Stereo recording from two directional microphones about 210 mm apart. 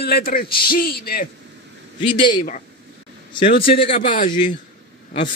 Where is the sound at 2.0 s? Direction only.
25° left (ahead or behind).